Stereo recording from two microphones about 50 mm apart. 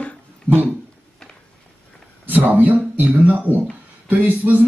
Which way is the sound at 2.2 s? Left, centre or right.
Right.